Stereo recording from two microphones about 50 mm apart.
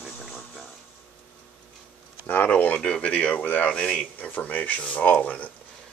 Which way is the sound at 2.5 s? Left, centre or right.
Left.